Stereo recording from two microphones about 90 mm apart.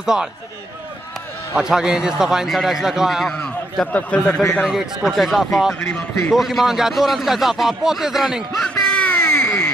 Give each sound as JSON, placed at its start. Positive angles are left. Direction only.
{"t": 0.0, "sound": "speech", "side_deg": -5}
{"t": 1.6, "sound": "speech", "side_deg": -10}
{"t": 3.3, "sound": "a sound", "side_deg": 5}
{"t": 3.9, "sound": "speech", "side_deg": 15}
{"t": 4.6, "sound": "speech", "side_deg": 0}
{"t": 5.8, "sound": "speech", "side_deg": 15}
{"t": 6.3, "sound": "speech", "side_deg": 0}
{"t": 8.6, "sound": "a sound", "side_deg": 10}
{"t": 9.3, "sound": "baby cry", "side_deg": 25}